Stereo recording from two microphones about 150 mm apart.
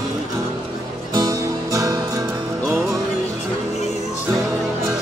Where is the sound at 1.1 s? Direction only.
20° right (ahead or behind).